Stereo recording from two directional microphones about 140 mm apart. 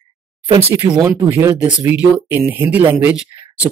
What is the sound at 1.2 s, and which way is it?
Speech, 20° right (ahead or behind).